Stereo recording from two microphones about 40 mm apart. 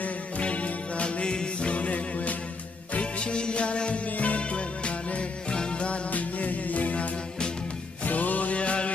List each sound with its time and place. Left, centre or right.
0.0 s music: left
6.1 s music: left